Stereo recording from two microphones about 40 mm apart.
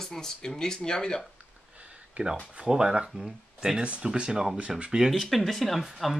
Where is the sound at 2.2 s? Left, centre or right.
Right.